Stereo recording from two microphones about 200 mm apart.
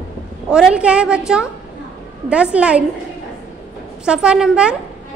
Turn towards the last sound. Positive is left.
turn(degrees=-5)  # may be behind; listen again after turning